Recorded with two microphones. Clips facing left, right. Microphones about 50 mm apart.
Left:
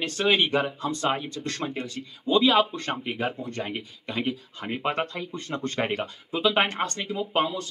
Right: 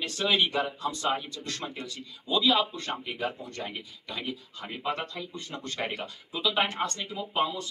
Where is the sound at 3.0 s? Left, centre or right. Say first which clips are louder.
Left 4 dB; left.